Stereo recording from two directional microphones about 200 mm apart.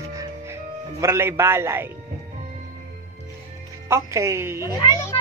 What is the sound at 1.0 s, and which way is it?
Speech, 15° right (ahead or behind).